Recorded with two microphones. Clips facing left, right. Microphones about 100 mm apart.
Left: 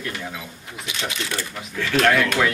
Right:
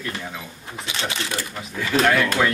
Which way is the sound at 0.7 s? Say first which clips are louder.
Right 2 dB; 30° right (ahead or behind).